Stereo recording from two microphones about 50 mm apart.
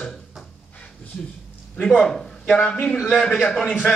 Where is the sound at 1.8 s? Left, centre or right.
Centre.